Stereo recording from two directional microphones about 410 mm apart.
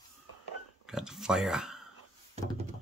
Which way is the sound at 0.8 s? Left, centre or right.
Centre.